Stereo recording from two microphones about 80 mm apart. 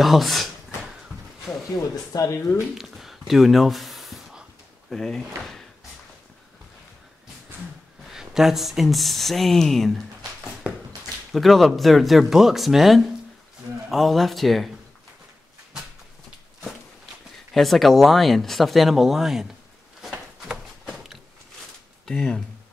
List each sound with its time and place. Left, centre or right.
0.0 s speech: centre
2.1 s speech: left
2.7 s a sound: centre
4.8 s speech: centre
8.1 s speech: centre
10.6 s a sound: centre
11.3 s speech: centre
17.6 s speech: centre
20.0 s a sound: centre
22.0 s speech: centre